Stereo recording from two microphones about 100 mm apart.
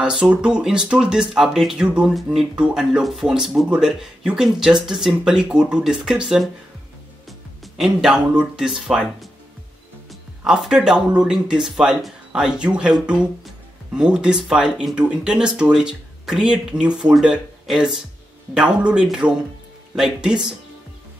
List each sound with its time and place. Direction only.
0.0 s speech: 10° right (ahead or behind)
10.4 s speech: 5° right (ahead or behind)